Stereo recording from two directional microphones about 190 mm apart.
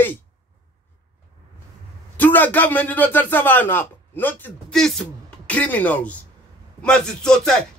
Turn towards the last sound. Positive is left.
turn(degrees=5)  # may be behind; listen again after turning